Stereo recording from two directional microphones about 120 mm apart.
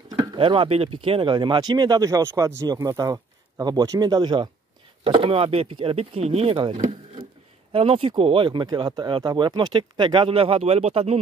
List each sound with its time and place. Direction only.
0.4 s speech: 50° right (ahead or behind)
5.0 s speech: 50° right (ahead or behind)
7.7 s speech: 50° right (ahead or behind)